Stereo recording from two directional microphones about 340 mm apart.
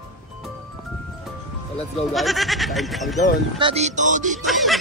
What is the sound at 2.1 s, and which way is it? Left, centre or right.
Speech, centre.